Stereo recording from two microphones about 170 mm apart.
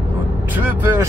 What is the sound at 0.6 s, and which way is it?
Vehicle, 10° right (ahead or behind).